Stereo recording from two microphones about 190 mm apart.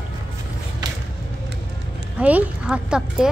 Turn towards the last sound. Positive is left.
turn(degrees=-5)  # may be behind; listen again after turning